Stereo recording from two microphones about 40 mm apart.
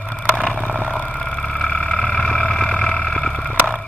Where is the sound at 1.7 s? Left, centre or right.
Left.